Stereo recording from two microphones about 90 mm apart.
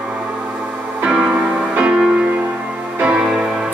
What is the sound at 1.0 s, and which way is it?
Music, 10° right (ahead or behind).